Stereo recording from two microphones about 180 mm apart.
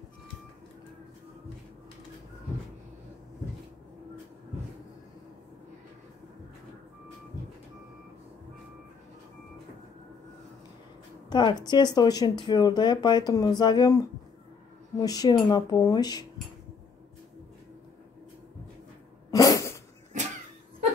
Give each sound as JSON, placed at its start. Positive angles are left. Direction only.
{"t": 11.2, "sound": "speech", "side_deg": 25}
{"t": 15.0, "sound": "speech", "side_deg": 20}
{"t": 19.3, "sound": "cat", "side_deg": 20}